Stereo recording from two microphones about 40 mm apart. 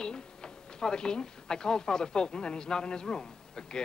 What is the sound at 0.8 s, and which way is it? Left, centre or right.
Speech, centre.